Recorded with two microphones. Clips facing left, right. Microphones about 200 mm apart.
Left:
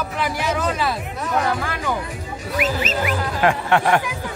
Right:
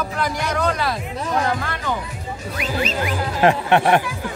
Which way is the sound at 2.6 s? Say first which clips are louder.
Left 2 dB; 5° left (ahead or behind).